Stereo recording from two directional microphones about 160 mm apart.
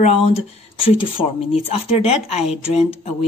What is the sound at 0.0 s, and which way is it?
A woman's voice, 40° left (ahead or behind).